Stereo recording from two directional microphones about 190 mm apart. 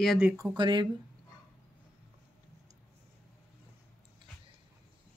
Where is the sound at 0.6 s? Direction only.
25° right (ahead or behind).